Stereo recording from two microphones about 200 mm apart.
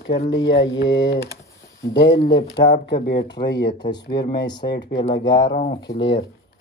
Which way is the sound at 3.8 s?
20° left (ahead or behind).